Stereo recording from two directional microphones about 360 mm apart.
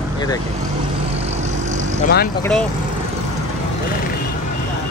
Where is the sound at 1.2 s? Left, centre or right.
Centre.